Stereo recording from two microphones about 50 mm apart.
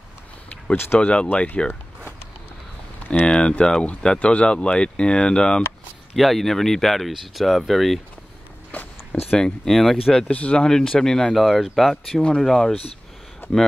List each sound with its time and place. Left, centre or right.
0.9 s speech: left
3.3 s speech: centre
6.1 s speech: centre
8.7 s a sound: left
9.1 s a sound: left
9.7 s speech: centre
10.3 s speech: left
11.3 s speech: centre
13.4 s a sound: left